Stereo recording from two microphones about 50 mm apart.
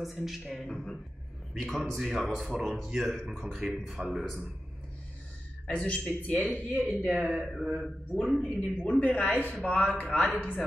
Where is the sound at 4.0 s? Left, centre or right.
Right.